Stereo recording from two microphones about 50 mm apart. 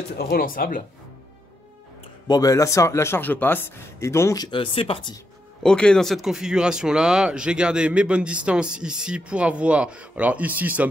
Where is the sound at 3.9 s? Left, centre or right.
Left.